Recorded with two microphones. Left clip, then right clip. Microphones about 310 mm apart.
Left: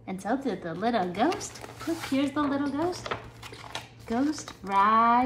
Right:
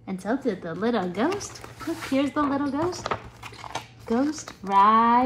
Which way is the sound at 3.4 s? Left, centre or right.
Centre.